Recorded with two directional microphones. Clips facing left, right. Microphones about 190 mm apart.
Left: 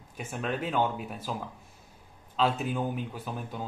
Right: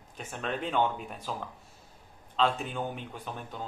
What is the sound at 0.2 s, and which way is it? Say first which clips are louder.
Speech: left 2 dB; 5° left (ahead or behind).